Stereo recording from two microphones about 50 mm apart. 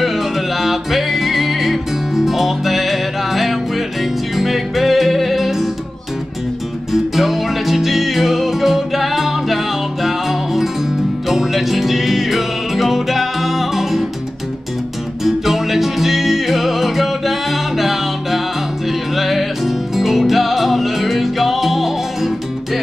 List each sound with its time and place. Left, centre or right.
0.0 s music: centre
6.9 s music: centre
15.2 s music: centre